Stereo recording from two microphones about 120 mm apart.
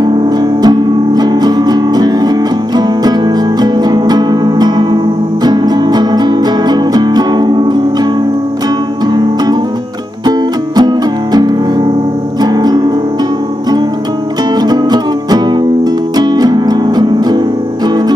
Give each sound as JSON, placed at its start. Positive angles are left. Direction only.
{"t": 0.0, "sound": "music", "side_deg": -35}
{"t": 9.1, "sound": "music", "side_deg": -35}
{"t": 10.8, "sound": "music", "side_deg": -35}
{"t": 14.6, "sound": "music", "side_deg": -35}